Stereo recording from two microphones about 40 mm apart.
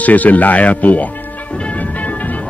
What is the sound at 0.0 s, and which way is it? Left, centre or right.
Speech, left.